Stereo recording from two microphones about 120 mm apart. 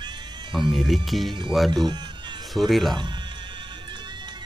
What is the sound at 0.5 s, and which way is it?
Speech, centre (ahead or behind).